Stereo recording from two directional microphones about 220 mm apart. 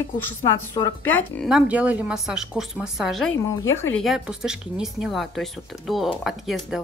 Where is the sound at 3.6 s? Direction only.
10° left (ahead or behind).